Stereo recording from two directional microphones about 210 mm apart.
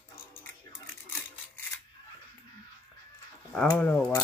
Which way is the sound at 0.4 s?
10° left (ahead or behind).